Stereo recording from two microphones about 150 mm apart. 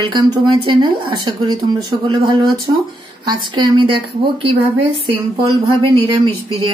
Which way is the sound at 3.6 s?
35° right (ahead or behind).